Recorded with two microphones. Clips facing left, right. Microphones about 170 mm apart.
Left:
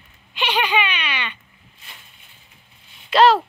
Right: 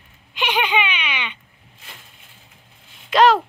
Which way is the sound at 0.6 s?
15° right (ahead or behind).